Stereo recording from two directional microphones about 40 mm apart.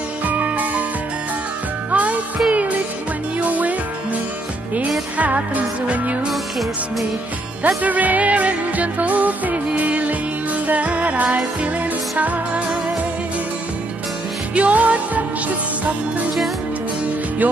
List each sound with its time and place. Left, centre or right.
0.3 s music: right
1.9 s music: right
5.1 s music: right
7.6 s music: right
14.5 s music: right